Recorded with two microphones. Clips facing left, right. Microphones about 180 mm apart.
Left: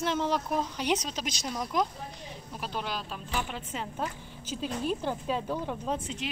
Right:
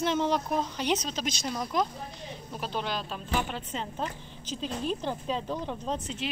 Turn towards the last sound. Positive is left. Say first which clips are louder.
# left 1 dB
turn(degrees=10)  # may be behind; listen again after turning